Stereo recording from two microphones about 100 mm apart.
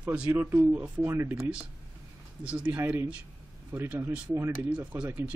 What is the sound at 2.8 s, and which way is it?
Speech, 25° right (ahead or behind).